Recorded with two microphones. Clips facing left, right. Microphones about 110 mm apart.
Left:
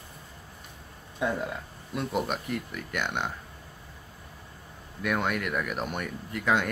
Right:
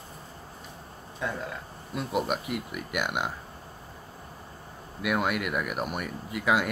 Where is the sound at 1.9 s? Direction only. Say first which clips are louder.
Right 1 dB; centre (ahead or behind).